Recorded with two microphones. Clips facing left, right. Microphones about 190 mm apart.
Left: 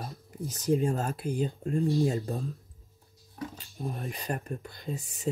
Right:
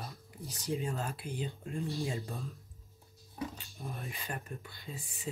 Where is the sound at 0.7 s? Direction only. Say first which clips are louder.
Left 9 dB; 45° left (ahead or behind).